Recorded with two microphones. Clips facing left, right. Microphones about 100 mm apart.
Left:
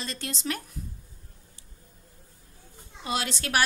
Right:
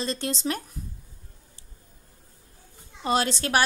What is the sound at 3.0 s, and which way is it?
Speech, 35° right (ahead or behind).